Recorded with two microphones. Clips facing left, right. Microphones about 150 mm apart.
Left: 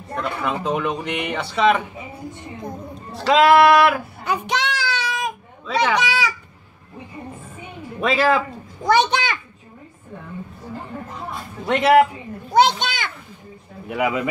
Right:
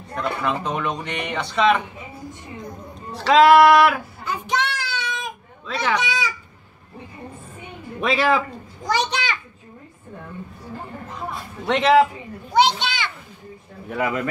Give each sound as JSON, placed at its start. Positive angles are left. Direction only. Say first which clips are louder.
{"t": 0.1, "sound": "speech", "louder": "even", "side_deg": 0}
{"t": 3.1, "sound": "speech", "louder": "right 1 dB", "side_deg": 0}
{"t": 4.2, "sound": "child singing", "louder": "even", "side_deg": 70}
{"t": 5.9, "sound": "a child's voice", "louder": "left 3 dB", "side_deg": 75}
{"t": 8.0, "sound": "speech", "louder": "left 1 dB", "side_deg": 0}
{"t": 8.8, "sound": "a child's voice", "louder": "left 6 dB", "side_deg": 55}
{"t": 11.6, "sound": "a man's voice", "louder": "left 1 dB", "side_deg": 10}
{"t": 12.5, "sound": "children playing", "louder": "left 2 dB", "side_deg": 45}
{"t": 13.8, "sound": "a man's voice", "louder": "left 2 dB", "side_deg": 10}